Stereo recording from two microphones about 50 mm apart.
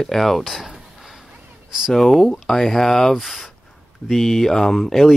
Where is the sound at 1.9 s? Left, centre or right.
Centre.